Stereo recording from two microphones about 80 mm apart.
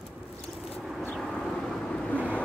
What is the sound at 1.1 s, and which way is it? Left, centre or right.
Vehicle, centre.